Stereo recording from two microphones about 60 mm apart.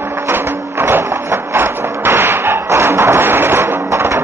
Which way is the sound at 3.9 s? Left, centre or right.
Right.